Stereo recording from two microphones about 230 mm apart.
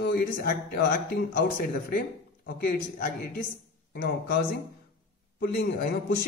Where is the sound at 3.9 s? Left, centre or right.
Left.